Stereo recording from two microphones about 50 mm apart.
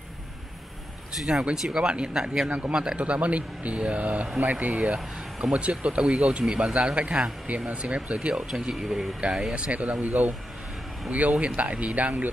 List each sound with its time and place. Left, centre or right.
1.1 s speech: centre
9.5 s speech: right